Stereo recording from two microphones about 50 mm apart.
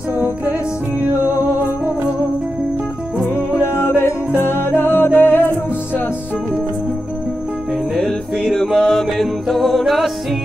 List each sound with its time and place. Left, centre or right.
3.6 s music: left
8.0 s music: centre